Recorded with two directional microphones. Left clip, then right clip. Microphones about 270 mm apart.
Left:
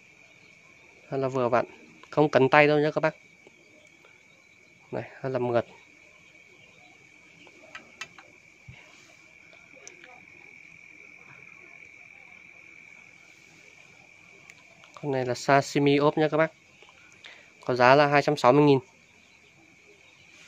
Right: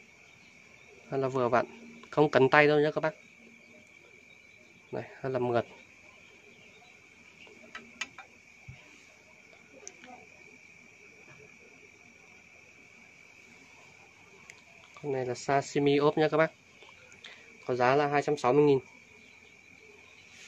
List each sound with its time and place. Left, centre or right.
1.1 s a man's voice: centre
4.9 s a man's voice: centre
15.0 s speech: left; by 16.5 s centre
17.6 s speech: left